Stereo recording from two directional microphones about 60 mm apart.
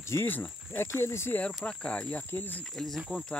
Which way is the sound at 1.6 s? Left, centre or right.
Centre.